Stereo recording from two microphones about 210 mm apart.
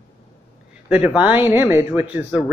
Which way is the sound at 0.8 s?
5° right (ahead or behind).